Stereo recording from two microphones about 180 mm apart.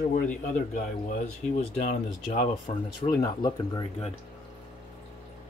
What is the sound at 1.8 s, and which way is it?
Speech, 55° left (ahead or behind).